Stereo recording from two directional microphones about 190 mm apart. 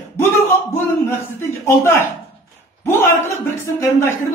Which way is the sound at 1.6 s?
15° left (ahead or behind).